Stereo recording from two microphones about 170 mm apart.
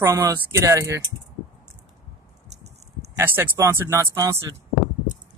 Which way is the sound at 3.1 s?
10° right (ahead or behind).